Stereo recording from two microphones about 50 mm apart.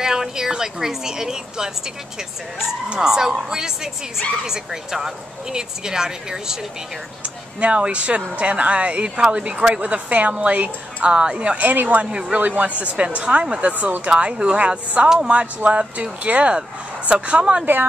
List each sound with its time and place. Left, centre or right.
0.0 s speech: centre
2.9 s speech: centre
7.6 s speech: right
12.0 s speech: right